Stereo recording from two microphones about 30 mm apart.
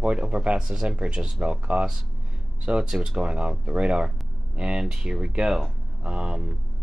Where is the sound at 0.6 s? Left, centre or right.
Centre.